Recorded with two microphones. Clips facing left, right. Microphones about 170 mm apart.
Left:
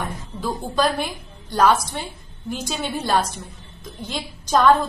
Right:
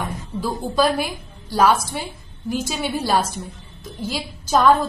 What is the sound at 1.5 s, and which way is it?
A woman's voice, 5° right (ahead or behind).